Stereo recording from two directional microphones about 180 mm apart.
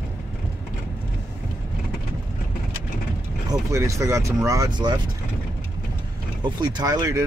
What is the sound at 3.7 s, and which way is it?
Speech, 15° right (ahead or behind).